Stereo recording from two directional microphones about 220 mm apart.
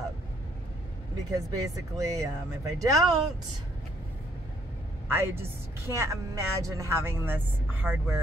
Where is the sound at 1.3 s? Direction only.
15° right (ahead or behind).